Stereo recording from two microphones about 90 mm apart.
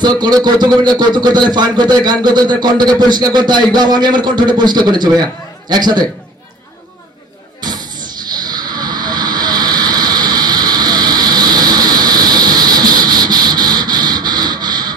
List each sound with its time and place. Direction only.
0.0 s speech: 50° right (ahead or behind)
8.3 s vehicle: 50° right (ahead or behind)